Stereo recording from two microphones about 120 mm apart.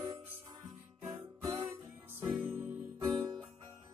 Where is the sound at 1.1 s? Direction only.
40° right (ahead or behind).